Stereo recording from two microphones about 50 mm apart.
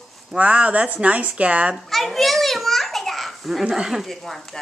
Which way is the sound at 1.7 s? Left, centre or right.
Centre.